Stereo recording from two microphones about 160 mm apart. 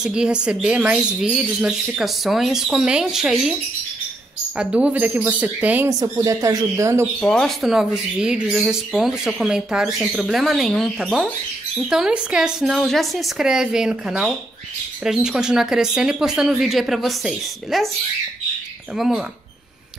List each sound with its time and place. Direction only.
0.0 s speech: 5° right (ahead or behind)
4.6 s speech: 5° right (ahead or behind)
5.9 s speech: 20° right (ahead or behind)
7.2 s speech: 5° left (ahead or behind)
18.9 s speech: centre (ahead or behind)